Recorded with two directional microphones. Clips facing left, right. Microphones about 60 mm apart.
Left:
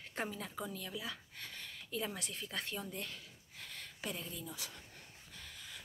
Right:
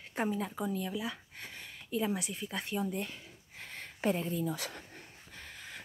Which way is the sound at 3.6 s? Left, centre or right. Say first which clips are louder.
Right 12 dB; right.